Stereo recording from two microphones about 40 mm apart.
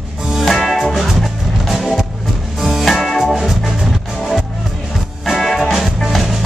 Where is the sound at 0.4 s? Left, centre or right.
Centre.